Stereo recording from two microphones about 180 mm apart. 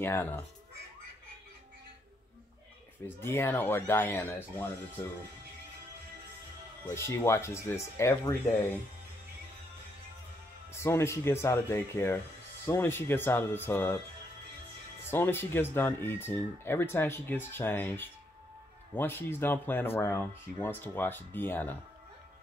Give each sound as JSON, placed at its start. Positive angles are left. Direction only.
{"t": 0.0, "sound": "speech", "side_deg": 10}
{"t": 3.2, "sound": "speech", "side_deg": 15}
{"t": 6.9, "sound": "speech", "side_deg": 15}
{"t": 10.7, "sound": "speech", "side_deg": 15}
{"t": 15.0, "sound": "speech", "side_deg": 10}